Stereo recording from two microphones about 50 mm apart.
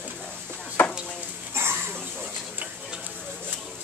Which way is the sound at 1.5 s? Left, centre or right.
Right.